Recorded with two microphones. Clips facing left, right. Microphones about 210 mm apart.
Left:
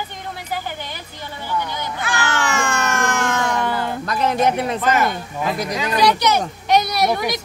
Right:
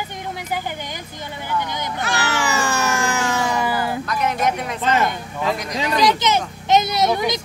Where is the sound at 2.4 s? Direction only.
5° right (ahead or behind).